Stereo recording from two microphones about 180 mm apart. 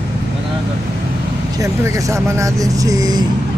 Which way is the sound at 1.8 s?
15° right (ahead or behind).